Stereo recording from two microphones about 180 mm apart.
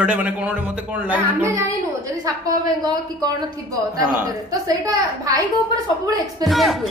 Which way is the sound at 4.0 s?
20° right (ahead or behind).